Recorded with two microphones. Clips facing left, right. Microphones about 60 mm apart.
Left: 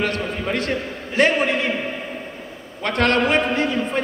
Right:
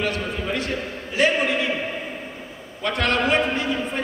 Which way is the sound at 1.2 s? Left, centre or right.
Left.